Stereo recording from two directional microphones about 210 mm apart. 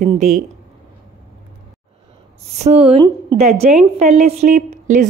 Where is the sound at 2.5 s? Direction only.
30° right (ahead or behind).